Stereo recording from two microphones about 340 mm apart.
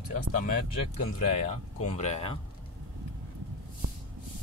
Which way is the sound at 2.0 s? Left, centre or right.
Centre.